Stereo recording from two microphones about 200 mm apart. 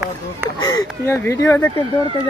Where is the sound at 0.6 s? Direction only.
20° left (ahead or behind).